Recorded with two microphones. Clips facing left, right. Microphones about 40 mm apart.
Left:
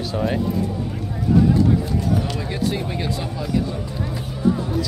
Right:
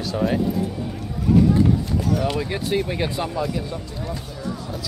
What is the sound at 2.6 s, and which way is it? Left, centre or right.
Speech, centre.